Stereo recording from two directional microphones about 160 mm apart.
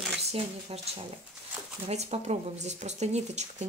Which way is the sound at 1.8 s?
45° right (ahead or behind).